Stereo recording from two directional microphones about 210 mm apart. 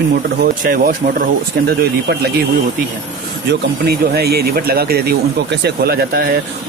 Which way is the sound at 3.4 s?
50° right (ahead or behind).